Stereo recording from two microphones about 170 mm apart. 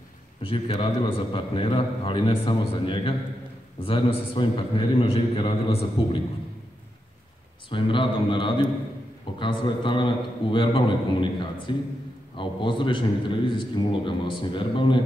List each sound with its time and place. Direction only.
0.4 s a man's voice: 30° left (ahead or behind)
7.7 s a man's voice: 30° left (ahead or behind)